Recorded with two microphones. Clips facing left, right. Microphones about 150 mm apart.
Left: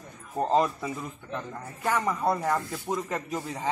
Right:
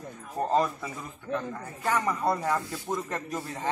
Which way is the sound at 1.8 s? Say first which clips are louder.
Left 1 dB; 5° left (ahead or behind).